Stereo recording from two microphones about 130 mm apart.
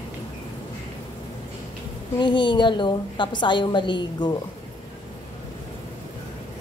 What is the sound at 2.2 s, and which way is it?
A woman's voice, 35° left (ahead or behind).